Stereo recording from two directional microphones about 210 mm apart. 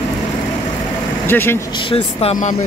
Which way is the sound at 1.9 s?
25° left (ahead or behind).